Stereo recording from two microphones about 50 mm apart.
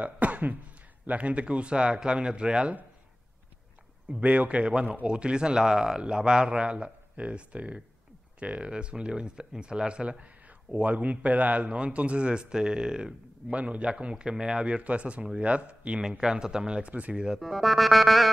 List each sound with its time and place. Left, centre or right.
0.0 s throat clearing: right
1.0 s speech: right
4.1 s speech: right; by 13.1 s centre
13.5 s speech: right
16.9 s speech: right
17.4 s music: centre